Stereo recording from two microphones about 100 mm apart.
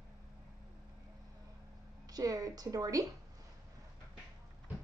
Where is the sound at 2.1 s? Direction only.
35° right (ahead or behind).